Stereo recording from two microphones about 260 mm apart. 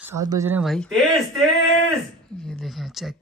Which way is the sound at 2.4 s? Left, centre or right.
Centre.